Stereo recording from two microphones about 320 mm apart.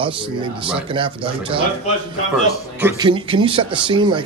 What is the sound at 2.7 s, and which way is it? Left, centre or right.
Speech, centre.